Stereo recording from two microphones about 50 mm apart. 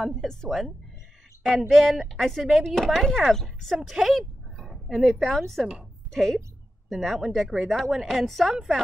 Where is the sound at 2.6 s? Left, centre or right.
Centre.